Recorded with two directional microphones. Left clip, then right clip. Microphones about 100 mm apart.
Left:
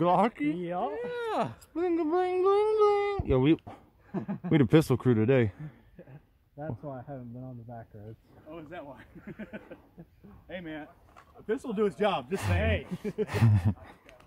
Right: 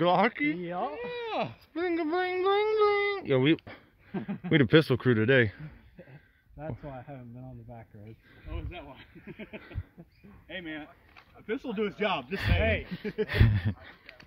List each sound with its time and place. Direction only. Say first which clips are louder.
0.0 s speech: right 1 dB; 15° left (ahead or behind)
1.2 s speech: left 2 dB; 40° left (ahead or behind)
1.8 s speech: left 1 dB; 25° left (ahead or behind)
6.6 s speech: left 1 dB; 5° left (ahead or behind)
8.5 s speech: left 2 dB; 10° left (ahead or behind)
9.2 s a sound: even; 5° left (ahead or behind)
10.5 s speech: right 1 dB; 15° left (ahead or behind)
11.4 s speech: left 3 dB; 25° left (ahead or behind)
12.5 s a sound: right 3 dB; centre (ahead or behind)
13.3 s speech: right 1 dB; 60° left (ahead or behind)